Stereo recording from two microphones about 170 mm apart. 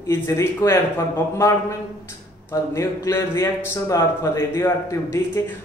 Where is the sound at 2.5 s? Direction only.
15° left (ahead or behind).